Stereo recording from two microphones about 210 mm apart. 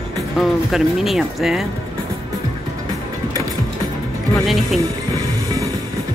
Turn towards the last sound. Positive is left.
turn(degrees=-15)  # may be behind; listen again after turning